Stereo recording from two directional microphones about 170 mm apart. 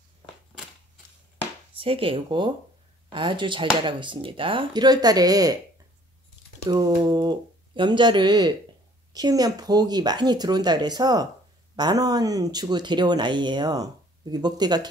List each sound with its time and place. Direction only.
1.8 s speech: 30° right (ahead or behind)
6.6 s speech: 25° right (ahead or behind)